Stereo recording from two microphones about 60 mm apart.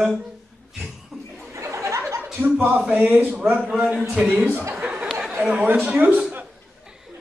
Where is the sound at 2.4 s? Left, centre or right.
Right; by 4.5 s centre.